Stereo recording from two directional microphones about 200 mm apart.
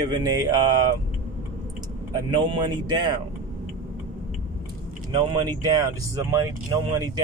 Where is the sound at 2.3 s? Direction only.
25° right (ahead or behind).